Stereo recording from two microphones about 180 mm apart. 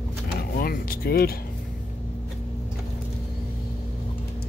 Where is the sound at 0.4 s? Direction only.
55° left (ahead or behind).